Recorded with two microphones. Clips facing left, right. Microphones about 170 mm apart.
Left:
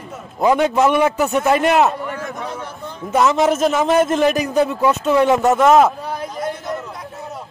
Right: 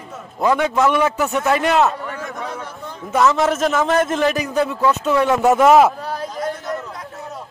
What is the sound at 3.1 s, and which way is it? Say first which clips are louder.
A man's voice: left 1 dB; 20° left (ahead or behind).